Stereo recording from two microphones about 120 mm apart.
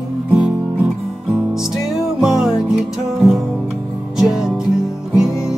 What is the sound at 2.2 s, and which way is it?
Music, 5° right (ahead or behind).